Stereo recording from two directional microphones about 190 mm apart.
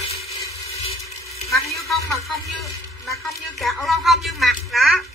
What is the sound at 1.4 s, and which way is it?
Speech, 15° left (ahead or behind).